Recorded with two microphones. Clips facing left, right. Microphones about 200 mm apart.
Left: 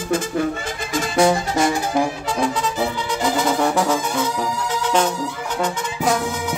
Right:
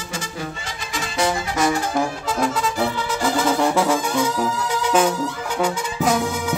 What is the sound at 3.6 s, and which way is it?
Music, centre (ahead or behind).